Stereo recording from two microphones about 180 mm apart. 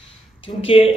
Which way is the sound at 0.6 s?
30° left (ahead or behind).